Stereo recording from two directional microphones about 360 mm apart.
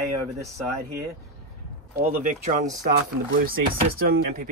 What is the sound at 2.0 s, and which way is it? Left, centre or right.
Speech, right.